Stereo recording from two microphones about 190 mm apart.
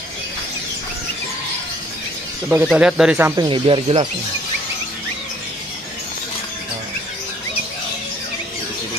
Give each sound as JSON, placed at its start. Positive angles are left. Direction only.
{"t": 2.5, "sound": "speech", "side_deg": -5}
{"t": 3.4, "sound": "speech", "side_deg": -30}